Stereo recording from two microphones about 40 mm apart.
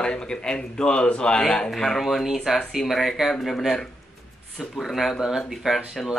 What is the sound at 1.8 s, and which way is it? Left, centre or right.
Speech, centre.